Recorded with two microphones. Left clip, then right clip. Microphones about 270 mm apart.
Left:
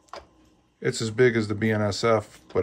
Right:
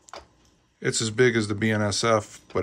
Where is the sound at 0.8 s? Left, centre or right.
Centre.